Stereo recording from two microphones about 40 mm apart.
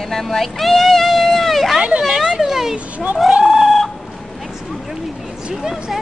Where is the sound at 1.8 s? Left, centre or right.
Right.